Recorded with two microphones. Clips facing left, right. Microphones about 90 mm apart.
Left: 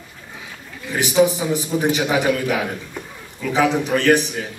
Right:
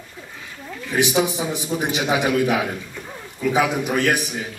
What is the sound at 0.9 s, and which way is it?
A man's voice, 20° right (ahead or behind).